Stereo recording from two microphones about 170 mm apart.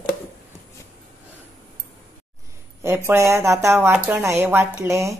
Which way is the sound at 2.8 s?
15° right (ahead or behind).